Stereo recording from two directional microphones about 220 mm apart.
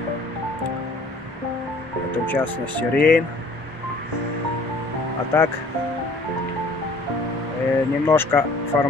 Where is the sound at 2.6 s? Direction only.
20° right (ahead or behind).